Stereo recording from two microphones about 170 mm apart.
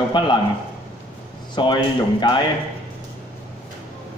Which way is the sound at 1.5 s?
25° left (ahead or behind).